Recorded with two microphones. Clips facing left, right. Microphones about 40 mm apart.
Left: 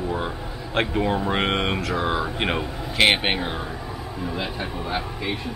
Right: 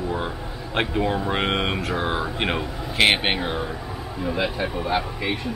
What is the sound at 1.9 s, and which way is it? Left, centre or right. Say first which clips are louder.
Speech: left 1 dB; right.